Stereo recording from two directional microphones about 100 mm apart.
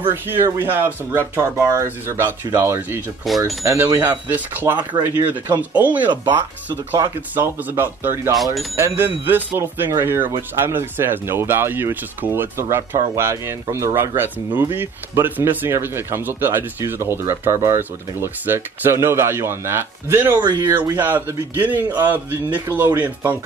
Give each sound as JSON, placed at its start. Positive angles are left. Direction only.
{"t": 0.1, "sound": "speech", "side_deg": -25}
{"t": 3.3, "sound": "speech", "side_deg": 0}
{"t": 3.6, "sound": "speech", "side_deg": -25}
{"t": 7.2, "sound": "speech", "side_deg": -20}
{"t": 8.4, "sound": "speech", "side_deg": 0}
{"t": 8.7, "sound": "speech", "side_deg": -25}
{"t": 20.3, "sound": "speech", "side_deg": -45}
{"t": 21.0, "sound": "speech", "side_deg": -20}